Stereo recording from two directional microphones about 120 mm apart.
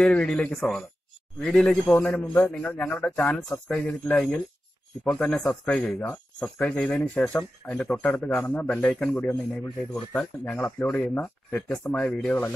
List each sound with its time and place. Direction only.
0.0 s speech: 5° left (ahead or behind)